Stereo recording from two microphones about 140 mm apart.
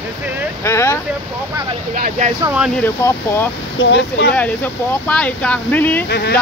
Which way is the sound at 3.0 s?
15° left (ahead or behind).